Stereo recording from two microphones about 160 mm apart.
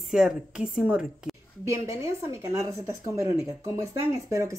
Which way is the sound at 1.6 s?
20° right (ahead or behind).